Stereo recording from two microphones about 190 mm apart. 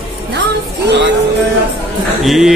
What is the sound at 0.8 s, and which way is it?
Speech, 65° right (ahead or behind).